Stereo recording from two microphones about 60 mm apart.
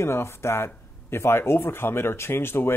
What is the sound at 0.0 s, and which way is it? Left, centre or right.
Speech, left.